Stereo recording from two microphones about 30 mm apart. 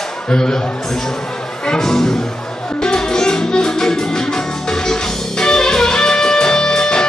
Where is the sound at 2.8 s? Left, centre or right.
Left.